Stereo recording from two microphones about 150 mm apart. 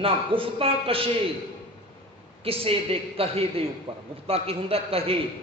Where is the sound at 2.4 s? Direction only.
40° right (ahead or behind).